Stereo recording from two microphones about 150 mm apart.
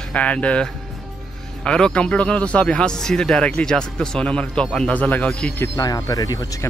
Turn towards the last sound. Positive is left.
turn(degrees=25)  # may be behind; listen again after turning